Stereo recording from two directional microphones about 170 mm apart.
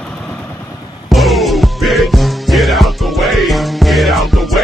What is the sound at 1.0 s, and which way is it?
Music, centre (ahead or behind).